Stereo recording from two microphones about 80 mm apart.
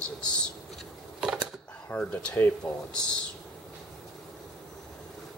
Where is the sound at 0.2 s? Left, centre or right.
Centre.